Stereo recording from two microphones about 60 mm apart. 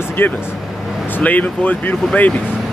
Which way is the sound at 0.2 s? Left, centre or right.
Left.